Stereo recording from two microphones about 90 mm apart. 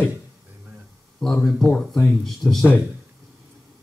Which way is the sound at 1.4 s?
5° left (ahead or behind).